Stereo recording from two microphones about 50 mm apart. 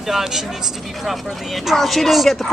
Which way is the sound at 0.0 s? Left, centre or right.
Centre.